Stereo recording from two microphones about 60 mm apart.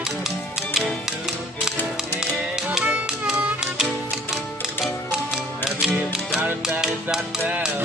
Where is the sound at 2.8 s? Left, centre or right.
Right.